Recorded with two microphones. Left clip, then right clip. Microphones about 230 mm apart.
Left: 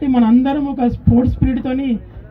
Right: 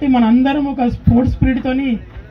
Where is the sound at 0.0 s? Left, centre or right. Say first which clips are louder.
Right 1 dB; right.